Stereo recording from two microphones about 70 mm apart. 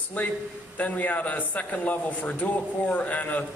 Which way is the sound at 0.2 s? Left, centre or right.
Left.